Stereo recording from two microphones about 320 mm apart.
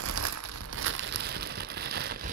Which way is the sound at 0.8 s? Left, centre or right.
Right.